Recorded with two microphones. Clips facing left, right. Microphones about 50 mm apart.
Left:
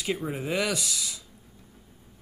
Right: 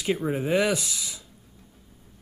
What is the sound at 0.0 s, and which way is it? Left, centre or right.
Speech, right.